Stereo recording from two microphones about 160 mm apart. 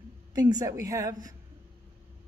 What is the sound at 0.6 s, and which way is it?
Speech, 20° right (ahead or behind).